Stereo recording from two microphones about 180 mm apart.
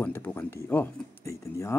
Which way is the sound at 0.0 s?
10° left (ahead or behind).